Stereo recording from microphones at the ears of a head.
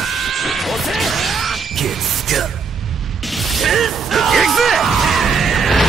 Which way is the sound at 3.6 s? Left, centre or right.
Right.